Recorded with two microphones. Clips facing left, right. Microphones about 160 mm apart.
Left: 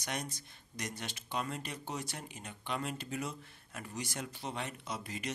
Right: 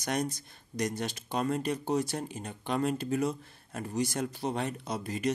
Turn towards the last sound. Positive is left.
turn(degrees=-40)  # may be behind; listen again after turning